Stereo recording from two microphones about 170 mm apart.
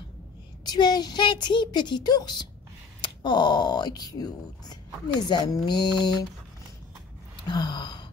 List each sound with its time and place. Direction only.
0.7 s a woman's voice: 25° left (ahead or behind)
7.4 s a woman's voice: 25° left (ahead or behind)